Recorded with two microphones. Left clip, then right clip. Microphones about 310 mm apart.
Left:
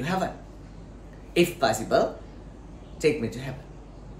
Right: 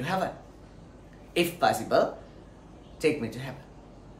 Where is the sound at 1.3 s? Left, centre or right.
Centre.